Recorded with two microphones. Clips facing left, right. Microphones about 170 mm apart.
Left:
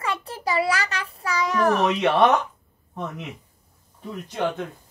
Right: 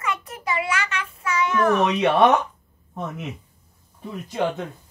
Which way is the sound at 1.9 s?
Centre (ahead or behind).